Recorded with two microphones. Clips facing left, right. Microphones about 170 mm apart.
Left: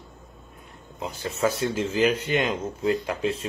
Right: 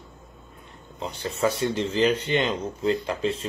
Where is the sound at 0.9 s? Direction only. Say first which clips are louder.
Even; 5° left (ahead or behind).